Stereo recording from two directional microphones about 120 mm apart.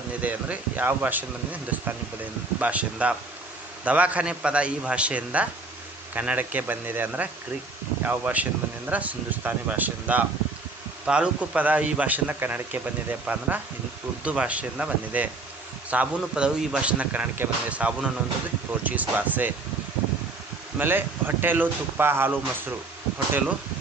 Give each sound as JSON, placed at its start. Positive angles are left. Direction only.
{"t": 0.2, "sound": "speech", "side_deg": -15}
{"t": 20.7, "sound": "speech", "side_deg": -15}